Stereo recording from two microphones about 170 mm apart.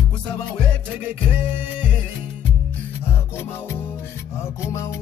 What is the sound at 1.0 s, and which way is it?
Music, 10° right (ahead or behind).